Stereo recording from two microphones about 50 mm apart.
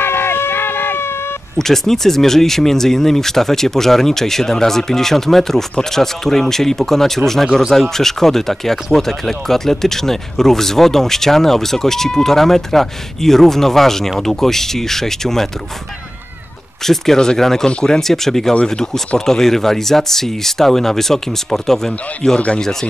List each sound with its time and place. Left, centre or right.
0.0 s a sound: left
1.6 s speech: centre
16.8 s speech: centre